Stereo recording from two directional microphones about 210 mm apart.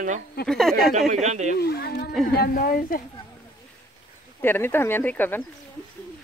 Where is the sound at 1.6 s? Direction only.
50° left (ahead or behind).